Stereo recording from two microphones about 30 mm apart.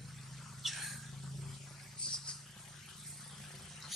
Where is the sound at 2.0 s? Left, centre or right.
Left.